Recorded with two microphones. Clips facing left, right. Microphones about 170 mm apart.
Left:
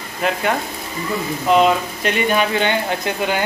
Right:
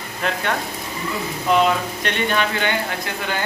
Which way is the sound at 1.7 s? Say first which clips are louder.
Left 3 dB; 10° left (ahead or behind).